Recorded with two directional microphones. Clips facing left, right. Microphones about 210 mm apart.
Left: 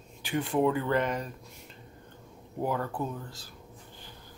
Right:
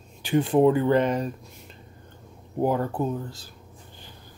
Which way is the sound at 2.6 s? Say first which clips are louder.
Right 7 dB; 30° right (ahead or behind).